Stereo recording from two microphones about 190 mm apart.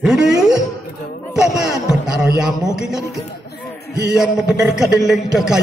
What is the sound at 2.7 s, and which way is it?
A man's voice, 5° right (ahead or behind).